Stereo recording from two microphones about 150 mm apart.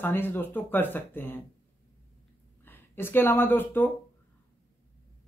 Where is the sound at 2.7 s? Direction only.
15° left (ahead or behind).